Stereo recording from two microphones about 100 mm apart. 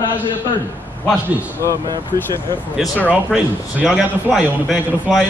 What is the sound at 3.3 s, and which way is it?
Speech, 10° right (ahead or behind).